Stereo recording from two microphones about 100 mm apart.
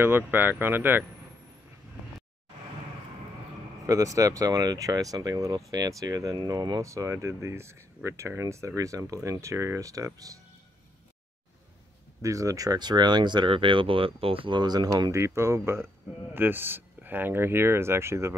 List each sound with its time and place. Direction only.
0.0 s speech: 20° right (ahead or behind)
3.8 s speech: 35° right (ahead or behind)
12.2 s speech: 35° right (ahead or behind)